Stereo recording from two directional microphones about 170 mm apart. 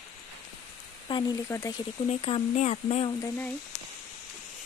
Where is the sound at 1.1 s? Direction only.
30° left (ahead or behind).